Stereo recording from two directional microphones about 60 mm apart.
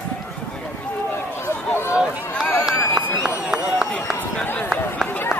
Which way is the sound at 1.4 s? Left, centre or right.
Left.